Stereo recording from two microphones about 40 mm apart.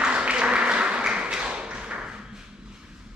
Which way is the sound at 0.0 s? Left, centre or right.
Right.